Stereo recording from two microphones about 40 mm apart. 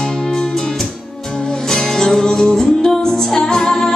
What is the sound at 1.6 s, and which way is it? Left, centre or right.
Music, centre.